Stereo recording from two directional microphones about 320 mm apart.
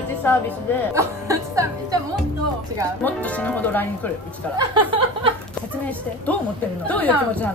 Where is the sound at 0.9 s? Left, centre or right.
Centre.